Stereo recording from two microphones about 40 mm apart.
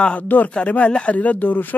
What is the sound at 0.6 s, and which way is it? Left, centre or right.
Speech, left.